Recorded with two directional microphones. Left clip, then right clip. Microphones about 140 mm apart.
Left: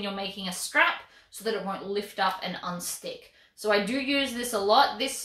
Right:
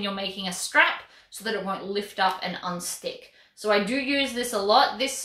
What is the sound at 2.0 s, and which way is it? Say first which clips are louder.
Speech: right 3 dB; 25° right (ahead or behind).